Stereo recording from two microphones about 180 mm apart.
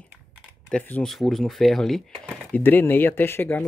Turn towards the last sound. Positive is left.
turn(degrees=10)  # may be behind; listen again after turning